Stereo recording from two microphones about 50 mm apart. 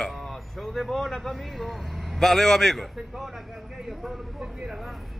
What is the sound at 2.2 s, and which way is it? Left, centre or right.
Speech, centre.